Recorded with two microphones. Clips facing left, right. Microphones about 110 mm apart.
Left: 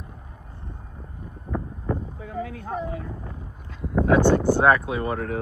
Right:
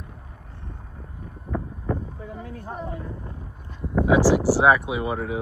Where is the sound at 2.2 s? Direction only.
90° left.